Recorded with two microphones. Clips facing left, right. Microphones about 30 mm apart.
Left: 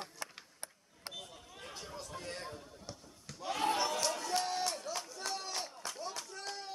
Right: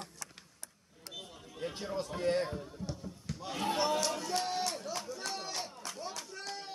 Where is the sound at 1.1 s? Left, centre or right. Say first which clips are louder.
Right 4 dB; centre.